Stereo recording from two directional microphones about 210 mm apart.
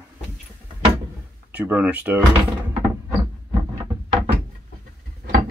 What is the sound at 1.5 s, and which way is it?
Speech, 10° right (ahead or behind).